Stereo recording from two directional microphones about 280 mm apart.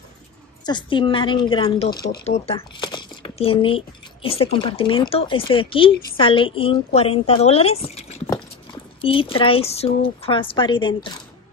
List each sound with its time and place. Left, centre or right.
0.7 s a woman's voice: centre